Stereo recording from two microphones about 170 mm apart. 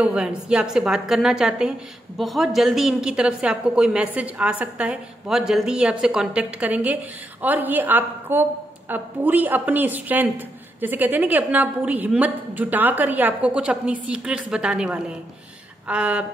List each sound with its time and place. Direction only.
0.0 s a woman's voice: 5° right (ahead or behind)